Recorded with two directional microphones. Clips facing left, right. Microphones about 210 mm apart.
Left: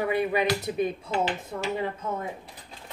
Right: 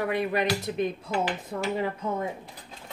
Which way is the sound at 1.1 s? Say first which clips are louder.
Left 1 dB; 25° left (ahead or behind).